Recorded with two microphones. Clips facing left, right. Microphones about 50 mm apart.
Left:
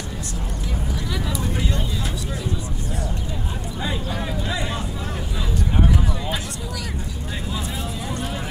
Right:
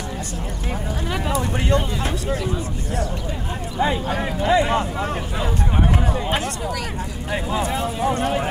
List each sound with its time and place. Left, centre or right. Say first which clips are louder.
1.1 s speech: right 4 dB; right
3.8 s speech: right 7 dB; right
7.5 s speech: right 8 dB; right